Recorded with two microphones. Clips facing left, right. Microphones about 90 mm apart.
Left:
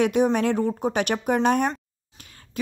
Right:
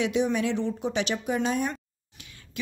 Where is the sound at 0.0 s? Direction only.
50° left (ahead or behind).